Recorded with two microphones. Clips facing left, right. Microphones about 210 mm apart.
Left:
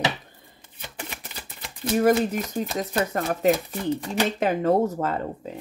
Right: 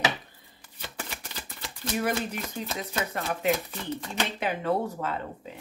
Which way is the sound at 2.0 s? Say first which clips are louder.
Left 9 dB; 40° left (ahead or behind).